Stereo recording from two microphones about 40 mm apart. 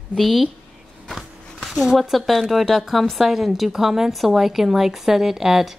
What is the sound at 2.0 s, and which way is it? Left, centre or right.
Speech, centre.